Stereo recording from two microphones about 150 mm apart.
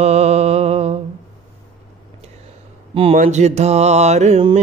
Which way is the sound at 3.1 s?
50° right (ahead or behind).